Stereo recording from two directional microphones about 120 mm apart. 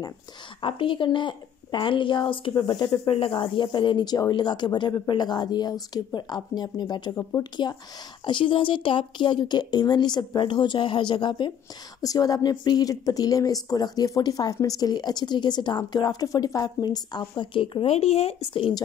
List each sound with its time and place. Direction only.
0.6 s speech: 45° left (ahead or behind)
3.1 s speech: 50° left (ahead or behind); by 7.7 s 35° left (ahead or behind)
8.3 s speech: 45° left (ahead or behind)
12.0 s speech: 30° left (ahead or behind); by 18.8 s 45° left (ahead or behind)